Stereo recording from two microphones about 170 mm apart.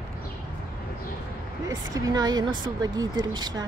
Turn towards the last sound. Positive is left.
turn(degrees=-25)  # may be behind; listen again after turning